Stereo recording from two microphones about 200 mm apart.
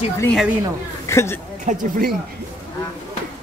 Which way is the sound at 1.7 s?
45° right (ahead or behind).